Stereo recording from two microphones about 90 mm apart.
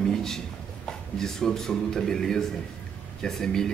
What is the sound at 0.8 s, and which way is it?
Speech, 5° left (ahead or behind).